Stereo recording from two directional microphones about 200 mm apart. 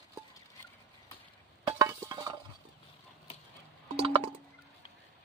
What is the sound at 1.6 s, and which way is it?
Stir, 15° right (ahead or behind).